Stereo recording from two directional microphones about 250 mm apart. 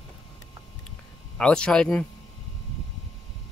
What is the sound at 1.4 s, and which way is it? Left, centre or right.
Speech, centre.